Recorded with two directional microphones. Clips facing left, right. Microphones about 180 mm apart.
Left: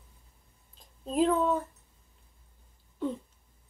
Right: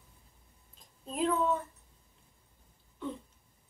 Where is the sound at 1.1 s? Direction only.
35° left (ahead or behind).